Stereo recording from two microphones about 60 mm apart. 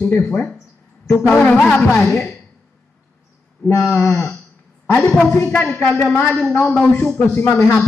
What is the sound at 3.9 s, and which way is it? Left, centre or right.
Speech, left.